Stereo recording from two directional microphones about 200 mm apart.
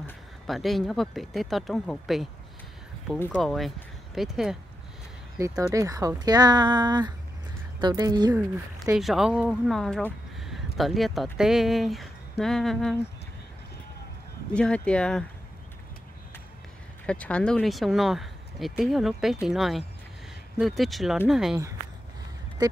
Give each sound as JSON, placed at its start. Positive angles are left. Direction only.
{"t": 0.0, "sound": "speech", "side_deg": 0}
{"t": 3.3, "sound": "speech", "side_deg": 0}
{"t": 5.4, "sound": "speech", "side_deg": -15}
{"t": 8.9, "sound": "speech", "side_deg": 0}
{"t": 14.5, "sound": "speech", "side_deg": 5}
{"t": 17.0, "sound": "speech", "side_deg": 5}